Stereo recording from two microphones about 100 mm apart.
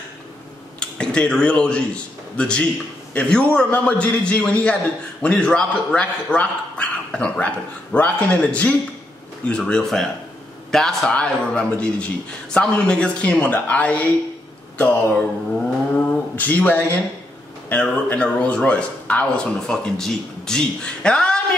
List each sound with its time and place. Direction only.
0.7 s speech: 10° left (ahead or behind)